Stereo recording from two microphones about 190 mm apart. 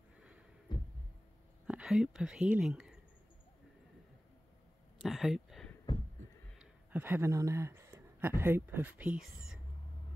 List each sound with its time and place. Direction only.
0.7 s heart sounds: 25° left (ahead or behind)
1.7 s speech: 5° right (ahead or behind)
5.0 s a sound: centre (ahead or behind)
6.6 s speech: 10° right (ahead or behind)